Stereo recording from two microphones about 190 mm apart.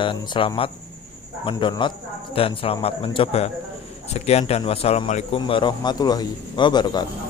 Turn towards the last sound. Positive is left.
turn(degrees=20)  # may be behind; listen again after turning